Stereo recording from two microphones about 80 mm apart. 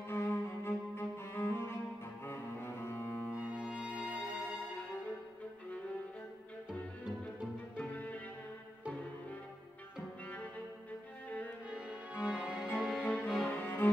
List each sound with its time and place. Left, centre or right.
0.1 s cello: left
3.3 s music: centre
7.7 s music: centre
10.2 s cello: centre
11.2 s music: centre
11.7 s music: centre
13.0 s music: centre